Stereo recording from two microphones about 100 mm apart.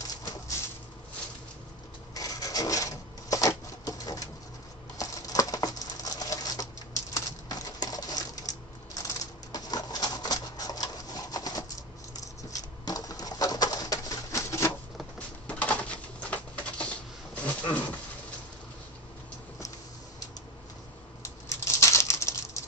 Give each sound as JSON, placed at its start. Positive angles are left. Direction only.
{"t": 2.1, "sound": "cash register", "side_deg": 35}
{"t": 4.9, "sound": "patter", "side_deg": 35}
{"t": 7.2, "sound": "typewriter", "side_deg": 40}
{"t": 9.0, "sound": "a sound", "side_deg": 40}
{"t": 12.2, "sound": "patter", "side_deg": 35}
{"t": 15.4, "sound": "a sound", "side_deg": 15}
{"t": 21.2, "sound": "patter", "side_deg": 30}